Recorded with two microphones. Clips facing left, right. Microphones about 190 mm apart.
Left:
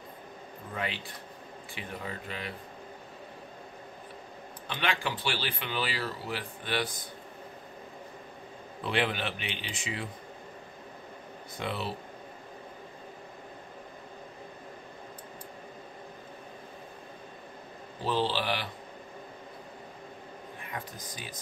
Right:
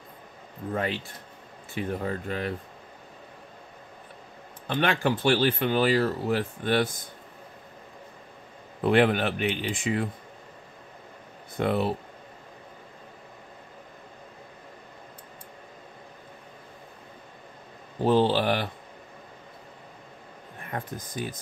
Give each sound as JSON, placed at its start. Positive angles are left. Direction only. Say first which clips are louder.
{"t": 0.7, "sound": "speech", "louder": "right 6 dB", "side_deg": -45}
{"t": 4.6, "sound": "speech", "louder": "right 8 dB", "side_deg": -50}
{"t": 8.8, "sound": "speech", "louder": "right 9 dB", "side_deg": -50}
{"t": 11.5, "sound": "speech", "louder": "right 10 dB", "side_deg": -50}
{"t": 18.0, "sound": "speech", "louder": "right 8 dB", "side_deg": -50}
{"t": 20.6, "sound": "speech", "louder": "right 8 dB", "side_deg": -50}